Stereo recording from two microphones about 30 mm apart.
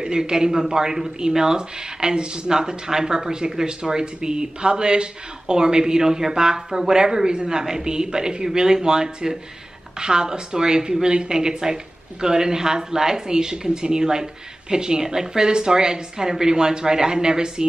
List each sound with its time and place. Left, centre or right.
0.0 s a woman's voice: right